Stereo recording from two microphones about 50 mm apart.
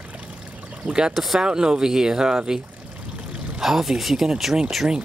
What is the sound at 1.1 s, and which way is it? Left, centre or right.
Speech, centre.